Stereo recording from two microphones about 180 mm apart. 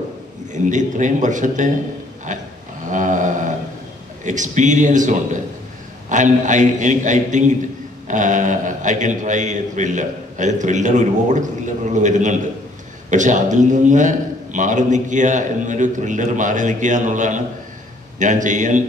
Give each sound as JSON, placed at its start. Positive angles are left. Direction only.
{"t": 0.5, "sound": "a man's voice", "side_deg": -45}
{"t": 2.9, "sound": "a sound", "side_deg": -45}
{"t": 4.2, "sound": "a man's voice", "side_deg": -45}